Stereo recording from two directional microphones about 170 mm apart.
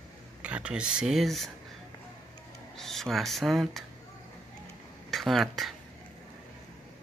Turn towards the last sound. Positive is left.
turn(degrees=0)  # may be behind; listen again after turning